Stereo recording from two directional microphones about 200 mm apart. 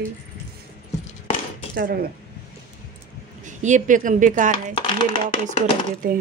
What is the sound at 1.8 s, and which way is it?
Speech, 50° right (ahead or behind).